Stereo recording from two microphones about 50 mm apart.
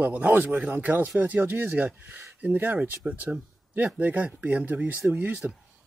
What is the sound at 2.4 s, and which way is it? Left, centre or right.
Speech, right.